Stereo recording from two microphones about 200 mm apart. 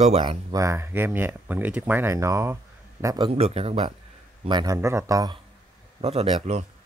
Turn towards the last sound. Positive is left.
turn(degrees=-30)  # may be behind; listen again after turning